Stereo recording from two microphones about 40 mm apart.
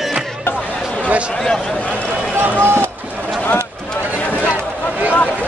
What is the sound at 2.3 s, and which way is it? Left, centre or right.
Run, right.